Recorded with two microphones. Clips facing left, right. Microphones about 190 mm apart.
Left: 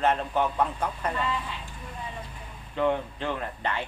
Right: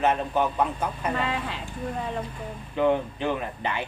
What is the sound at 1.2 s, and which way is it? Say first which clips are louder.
Speech: right 2 dB; 90° right.